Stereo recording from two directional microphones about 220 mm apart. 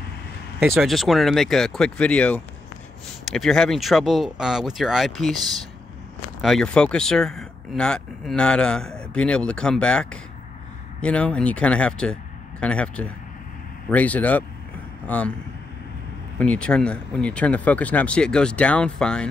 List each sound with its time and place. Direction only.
0.6 s speech: centre (ahead or behind)
6.4 s speech: 5° left (ahead or behind)
16.3 s speech: 5° left (ahead or behind)